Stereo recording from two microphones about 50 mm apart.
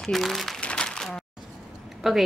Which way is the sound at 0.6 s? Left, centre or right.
Centre.